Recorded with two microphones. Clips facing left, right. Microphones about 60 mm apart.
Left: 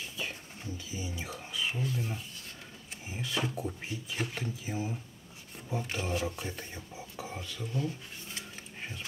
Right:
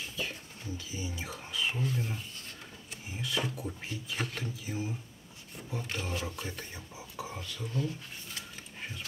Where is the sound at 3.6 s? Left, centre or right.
Centre.